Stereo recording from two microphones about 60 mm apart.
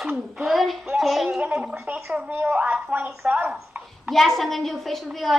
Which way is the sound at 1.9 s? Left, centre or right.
Right.